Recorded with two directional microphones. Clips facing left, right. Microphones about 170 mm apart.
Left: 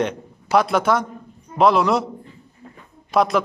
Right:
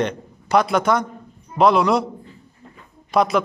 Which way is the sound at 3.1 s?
Centre (ahead or behind).